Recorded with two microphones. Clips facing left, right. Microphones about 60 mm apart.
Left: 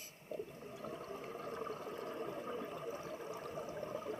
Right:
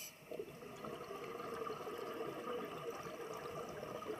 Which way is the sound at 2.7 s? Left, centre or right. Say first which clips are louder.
Left 1 dB; centre.